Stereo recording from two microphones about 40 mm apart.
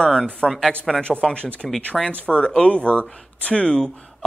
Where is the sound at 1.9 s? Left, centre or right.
Centre.